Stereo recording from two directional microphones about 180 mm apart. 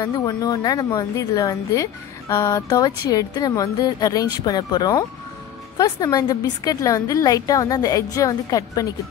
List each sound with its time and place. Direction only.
0.0 s a woman's voice: 20° left (ahead or behind)